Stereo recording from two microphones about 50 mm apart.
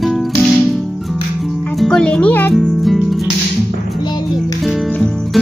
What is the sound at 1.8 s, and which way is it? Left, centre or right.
Speech, centre.